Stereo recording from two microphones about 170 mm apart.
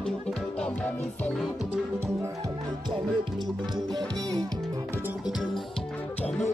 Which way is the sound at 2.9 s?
25° right (ahead or behind).